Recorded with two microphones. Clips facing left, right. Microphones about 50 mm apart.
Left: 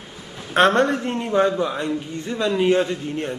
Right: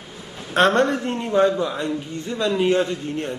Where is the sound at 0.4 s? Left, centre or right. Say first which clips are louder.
Left 1 dB; centre.